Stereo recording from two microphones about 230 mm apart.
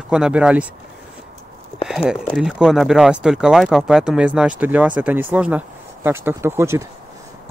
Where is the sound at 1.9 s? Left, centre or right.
Centre.